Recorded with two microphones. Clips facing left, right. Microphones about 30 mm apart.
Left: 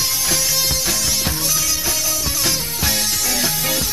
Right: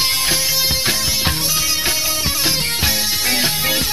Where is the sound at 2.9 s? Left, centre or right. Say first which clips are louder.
Right 1 dB; centre.